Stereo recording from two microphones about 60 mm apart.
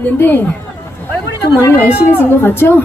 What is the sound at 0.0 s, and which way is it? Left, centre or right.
Speech, left.